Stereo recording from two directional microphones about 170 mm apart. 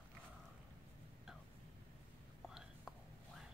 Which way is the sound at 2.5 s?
5° right (ahead or behind).